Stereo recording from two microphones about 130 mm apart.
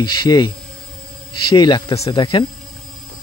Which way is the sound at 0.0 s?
35° left (ahead or behind).